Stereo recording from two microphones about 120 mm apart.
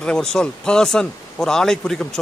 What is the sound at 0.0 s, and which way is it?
A man's voice, 5° left (ahead or behind).